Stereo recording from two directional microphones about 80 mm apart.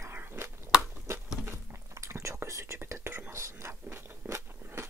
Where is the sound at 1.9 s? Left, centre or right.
Right.